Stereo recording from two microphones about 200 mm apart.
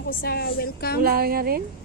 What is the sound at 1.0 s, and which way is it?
Speech, 50° right (ahead or behind).